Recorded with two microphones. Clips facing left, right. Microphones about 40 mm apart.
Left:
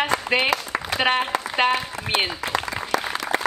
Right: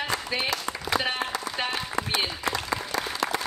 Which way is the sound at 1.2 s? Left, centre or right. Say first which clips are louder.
Left 4 dB; left.